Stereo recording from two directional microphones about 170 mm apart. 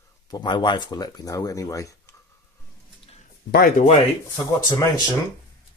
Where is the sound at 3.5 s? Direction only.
60° left (ahead or behind).